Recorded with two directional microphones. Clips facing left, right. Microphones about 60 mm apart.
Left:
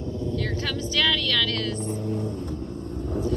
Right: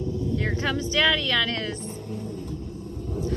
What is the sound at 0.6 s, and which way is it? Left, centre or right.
Speech, right.